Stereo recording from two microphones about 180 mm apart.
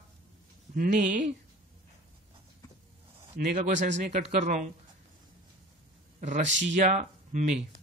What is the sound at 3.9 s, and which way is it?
Speech, 45° right (ahead or behind).